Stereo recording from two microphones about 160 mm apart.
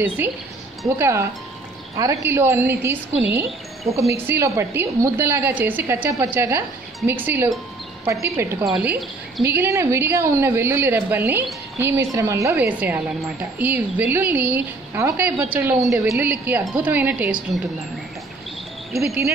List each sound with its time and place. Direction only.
0.8 s a woman's voice: 15° right (ahead or behind)